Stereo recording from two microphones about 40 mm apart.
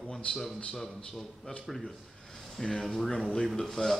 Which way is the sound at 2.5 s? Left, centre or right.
Centre.